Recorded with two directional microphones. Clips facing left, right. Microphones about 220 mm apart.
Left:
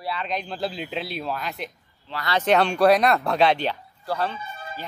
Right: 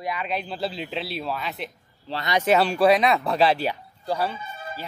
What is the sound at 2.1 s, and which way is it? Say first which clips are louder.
Speech: right 3 dB; 35° right (ahead or behind).